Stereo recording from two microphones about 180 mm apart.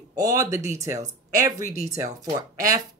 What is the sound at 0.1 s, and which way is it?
Speech, 20° right (ahead or behind).